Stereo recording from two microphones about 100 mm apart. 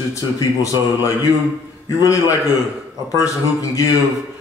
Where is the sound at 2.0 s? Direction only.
35° left (ahead or behind).